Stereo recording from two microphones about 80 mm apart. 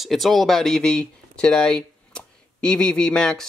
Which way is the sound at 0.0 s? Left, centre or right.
Centre.